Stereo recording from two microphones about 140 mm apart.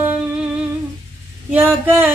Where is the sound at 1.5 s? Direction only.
15° right (ahead or behind).